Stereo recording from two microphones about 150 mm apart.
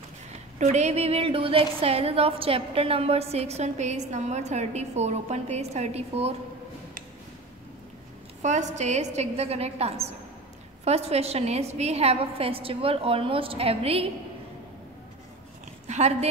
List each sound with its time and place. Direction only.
0.6 s a woman's voice: 50° right (ahead or behind)
8.4 s a woman's voice: 50° right (ahead or behind)
15.9 s a woman's voice: 45° right (ahead or behind)